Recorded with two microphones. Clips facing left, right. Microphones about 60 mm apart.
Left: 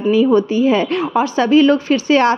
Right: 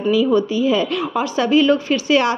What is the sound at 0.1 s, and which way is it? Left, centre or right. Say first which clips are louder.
A woman's voice: left 3 dB; left.